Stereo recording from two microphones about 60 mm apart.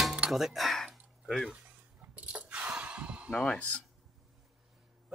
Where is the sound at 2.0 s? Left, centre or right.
Right.